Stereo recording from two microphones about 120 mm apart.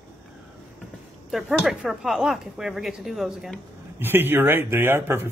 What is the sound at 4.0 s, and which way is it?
Speech, 20° right (ahead or behind).